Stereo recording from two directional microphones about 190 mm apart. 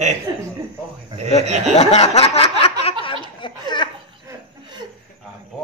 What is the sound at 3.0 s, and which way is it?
Speech, 25° left (ahead or behind).